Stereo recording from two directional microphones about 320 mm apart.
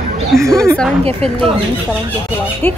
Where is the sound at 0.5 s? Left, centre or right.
Centre.